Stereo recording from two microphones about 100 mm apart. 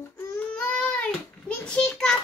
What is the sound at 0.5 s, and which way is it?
Child singing, 10° left (ahead or behind).